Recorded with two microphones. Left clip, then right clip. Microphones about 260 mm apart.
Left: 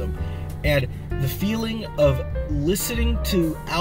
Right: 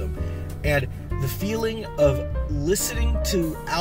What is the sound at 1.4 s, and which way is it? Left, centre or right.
Speech, centre.